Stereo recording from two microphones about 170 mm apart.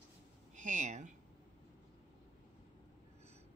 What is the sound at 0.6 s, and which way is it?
Speech, 45° right (ahead or behind).